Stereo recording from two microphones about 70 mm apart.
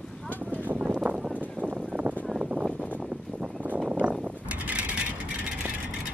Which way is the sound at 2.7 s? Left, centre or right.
Left.